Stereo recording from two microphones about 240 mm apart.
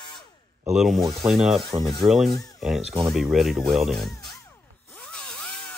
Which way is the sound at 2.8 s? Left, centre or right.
Right.